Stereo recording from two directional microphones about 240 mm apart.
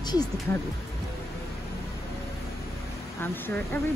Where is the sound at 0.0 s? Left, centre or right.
Centre.